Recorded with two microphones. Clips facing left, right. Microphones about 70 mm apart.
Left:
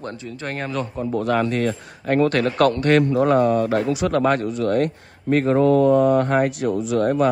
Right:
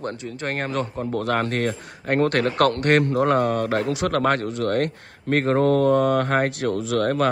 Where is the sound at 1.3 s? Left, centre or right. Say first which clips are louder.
Left 3 dB; right.